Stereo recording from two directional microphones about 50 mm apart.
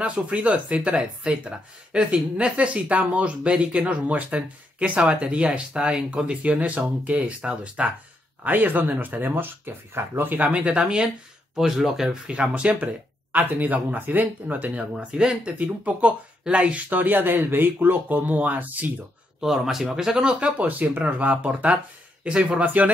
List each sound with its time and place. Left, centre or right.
0.0 s speech: right
8.5 s speech: right
10.5 s speech: right
11.5 s speech: centre
12.3 s speech: right
13.4 s speech: right; by 15.5 s centre
15.6 s speech: right
16.9 s speech: right
19.4 s speech: centre
20.3 s speech: right